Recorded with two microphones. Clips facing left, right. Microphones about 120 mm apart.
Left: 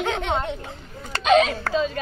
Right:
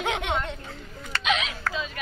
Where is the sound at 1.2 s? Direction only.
40° left (ahead or behind).